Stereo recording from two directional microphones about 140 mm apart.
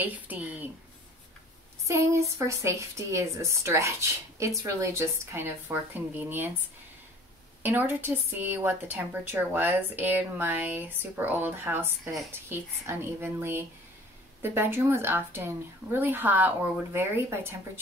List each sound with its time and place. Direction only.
0.0 s a woman's voice: 10° right (ahead or behind)
1.9 s a woman's voice: 20° right (ahead or behind)
7.6 s a woman's voice: 15° right (ahead or behind)